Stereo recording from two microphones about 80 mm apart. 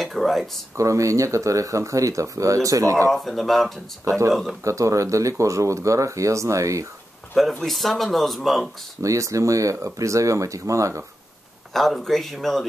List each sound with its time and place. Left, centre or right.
0.0 s a sound: centre
0.7 s speech: right
3.1 s speech: centre
4.6 s speech: right
7.6 s speech: centre
9.0 s speech: right
11.7 s speech: centre